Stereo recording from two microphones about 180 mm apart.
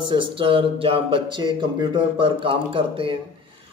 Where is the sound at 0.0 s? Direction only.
25° right (ahead or behind).